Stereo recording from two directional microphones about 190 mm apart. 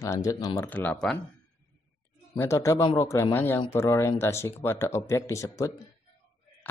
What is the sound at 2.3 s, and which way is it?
Speech, 15° left (ahead or behind).